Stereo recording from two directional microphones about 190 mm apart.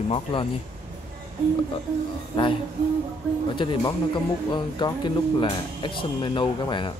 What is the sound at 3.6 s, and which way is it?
Speech, 25° left (ahead or behind).